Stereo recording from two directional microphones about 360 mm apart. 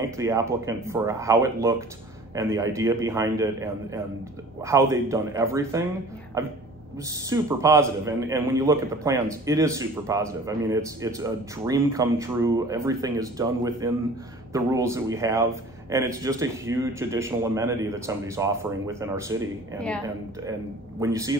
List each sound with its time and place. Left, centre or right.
0.2 s a man's voice: centre
7.1 s a man's voice: centre
21.0 s a man's voice: centre